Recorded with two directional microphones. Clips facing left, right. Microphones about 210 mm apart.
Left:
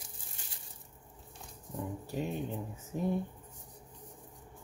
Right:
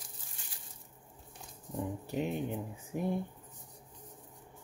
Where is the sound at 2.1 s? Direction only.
20° right (ahead or behind).